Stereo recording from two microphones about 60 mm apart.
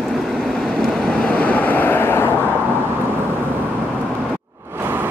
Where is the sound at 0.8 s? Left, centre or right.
Centre; by 2.3 s left.